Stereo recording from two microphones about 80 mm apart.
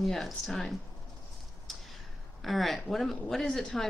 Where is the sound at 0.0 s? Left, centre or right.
Centre.